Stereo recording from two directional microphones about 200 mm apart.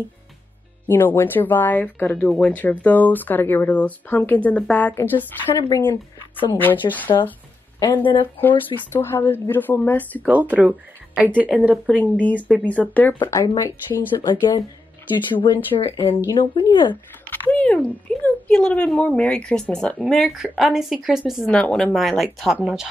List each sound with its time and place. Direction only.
0.8 s speech: 10° left (ahead or behind)
8.4 s speech: 10° left (ahead or behind)
10.2 s speech: 10° right (ahead or behind); by 16.9 s 25° left (ahead or behind)
16.9 s speech: 10° left (ahead or behind)